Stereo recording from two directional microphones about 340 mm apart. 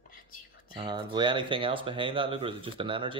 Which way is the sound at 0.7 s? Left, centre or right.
Centre.